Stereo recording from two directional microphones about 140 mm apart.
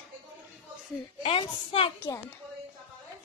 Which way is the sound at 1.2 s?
40° left (ahead or behind).